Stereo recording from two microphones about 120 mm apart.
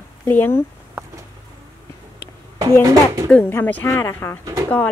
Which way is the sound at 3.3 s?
15° left (ahead or behind).